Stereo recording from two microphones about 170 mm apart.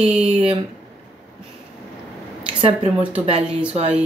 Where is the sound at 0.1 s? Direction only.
35° right (ahead or behind).